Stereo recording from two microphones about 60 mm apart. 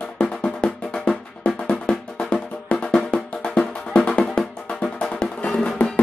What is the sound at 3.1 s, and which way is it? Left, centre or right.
Drum, centre.